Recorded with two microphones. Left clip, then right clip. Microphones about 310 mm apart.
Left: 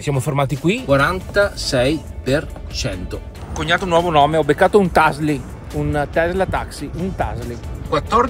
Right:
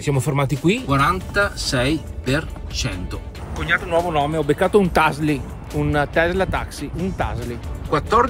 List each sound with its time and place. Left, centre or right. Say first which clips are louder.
0.0 s speech: left 2 dB; centre